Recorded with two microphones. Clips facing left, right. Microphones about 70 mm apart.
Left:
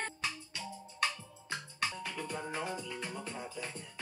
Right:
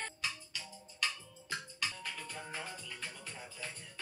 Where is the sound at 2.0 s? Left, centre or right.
Centre.